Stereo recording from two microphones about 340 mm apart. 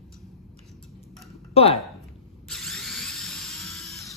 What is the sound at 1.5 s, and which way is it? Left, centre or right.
Speech, centre.